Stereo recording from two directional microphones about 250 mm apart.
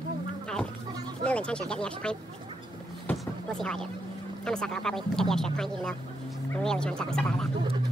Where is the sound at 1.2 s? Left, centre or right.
Centre.